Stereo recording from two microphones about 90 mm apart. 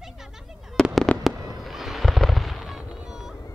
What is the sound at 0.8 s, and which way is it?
Fireworks, 5° left (ahead or behind).